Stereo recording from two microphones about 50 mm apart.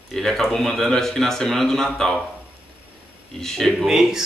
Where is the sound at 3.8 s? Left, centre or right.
Centre.